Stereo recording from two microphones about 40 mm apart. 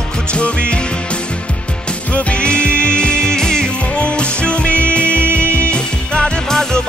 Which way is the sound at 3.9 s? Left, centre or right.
Left.